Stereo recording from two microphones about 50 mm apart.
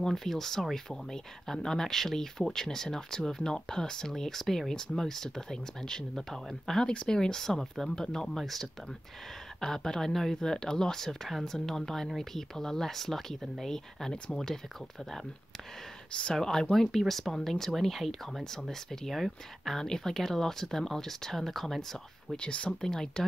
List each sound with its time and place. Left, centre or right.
0.0 s speech: centre
16.1 s speech: centre
16.3 s speech: centre
22.3 s speech: left